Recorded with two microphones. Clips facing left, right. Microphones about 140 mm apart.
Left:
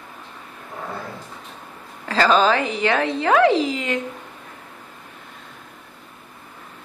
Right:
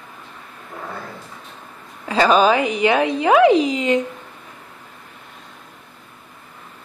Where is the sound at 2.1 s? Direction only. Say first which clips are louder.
Right 2 dB; 15° right (ahead or behind).